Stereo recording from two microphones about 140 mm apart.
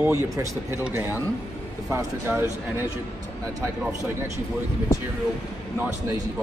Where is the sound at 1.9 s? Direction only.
20° right (ahead or behind).